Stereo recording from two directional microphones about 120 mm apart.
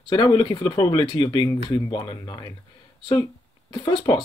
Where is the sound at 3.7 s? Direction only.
40° left (ahead or behind).